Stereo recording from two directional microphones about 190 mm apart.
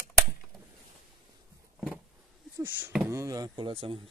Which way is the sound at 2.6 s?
10° right (ahead or behind).